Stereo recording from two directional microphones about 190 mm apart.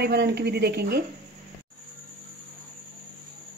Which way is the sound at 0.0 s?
60° right (ahead or behind).